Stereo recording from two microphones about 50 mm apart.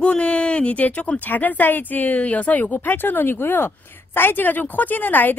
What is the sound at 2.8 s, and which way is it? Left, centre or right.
A woman's voice, left.